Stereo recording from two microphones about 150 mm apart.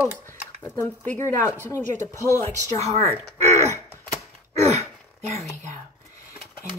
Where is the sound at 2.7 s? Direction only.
45° right (ahead or behind).